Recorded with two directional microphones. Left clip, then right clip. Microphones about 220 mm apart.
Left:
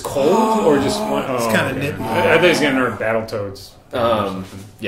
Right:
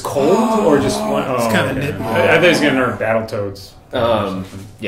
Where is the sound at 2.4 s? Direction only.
35° left (ahead or behind).